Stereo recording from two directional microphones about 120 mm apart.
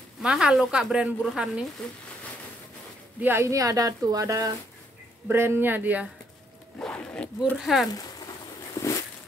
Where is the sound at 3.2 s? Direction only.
20° right (ahead or behind).